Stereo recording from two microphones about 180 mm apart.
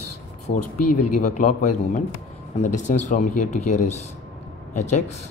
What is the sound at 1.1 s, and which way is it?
Speech, 45° left (ahead or behind).